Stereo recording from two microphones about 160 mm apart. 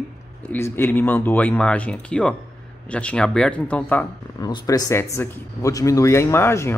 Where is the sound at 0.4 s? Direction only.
10° left (ahead or behind).